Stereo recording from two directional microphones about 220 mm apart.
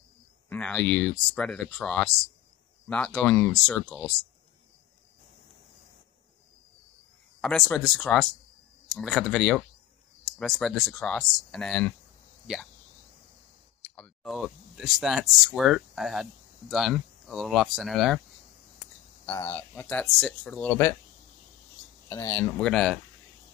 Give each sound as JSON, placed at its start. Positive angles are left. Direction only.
{"t": 0.5, "sound": "speech", "side_deg": 5}
{"t": 7.4, "sound": "speech", "side_deg": 0}
{"t": 13.8, "sound": "speech", "side_deg": 0}
{"t": 19.2, "sound": "speech", "side_deg": 10}
{"t": 22.1, "sound": "speech", "side_deg": 10}